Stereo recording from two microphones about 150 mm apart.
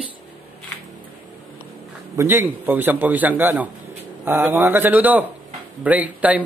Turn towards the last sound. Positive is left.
turn(degrees=-10)  # may be behind; listen again after turning